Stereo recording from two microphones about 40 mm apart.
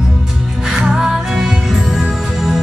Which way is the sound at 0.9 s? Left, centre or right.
Centre.